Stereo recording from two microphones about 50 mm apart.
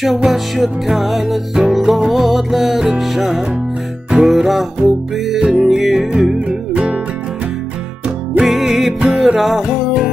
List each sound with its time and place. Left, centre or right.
0.0 s music: centre
5.4 s music: centre
6.7 s music: centre
8.5 s music: centre